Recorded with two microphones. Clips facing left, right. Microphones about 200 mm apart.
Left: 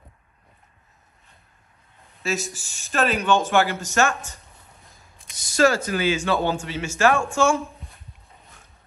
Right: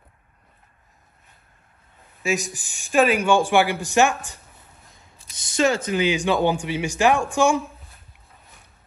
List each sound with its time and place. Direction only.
2.2 s speech: 15° right (ahead or behind)
5.6 s speech: 20° right (ahead or behind)